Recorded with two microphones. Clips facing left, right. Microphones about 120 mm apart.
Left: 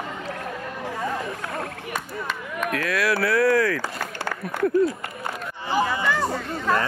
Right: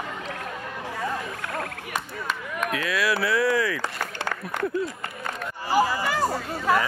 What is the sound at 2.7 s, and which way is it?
Speech, centre (ahead or behind).